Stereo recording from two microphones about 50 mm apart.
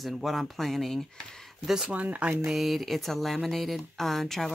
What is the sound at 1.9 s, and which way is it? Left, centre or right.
Speech, right.